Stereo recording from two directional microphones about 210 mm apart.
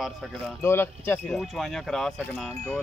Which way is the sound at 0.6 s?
10° left (ahead or behind).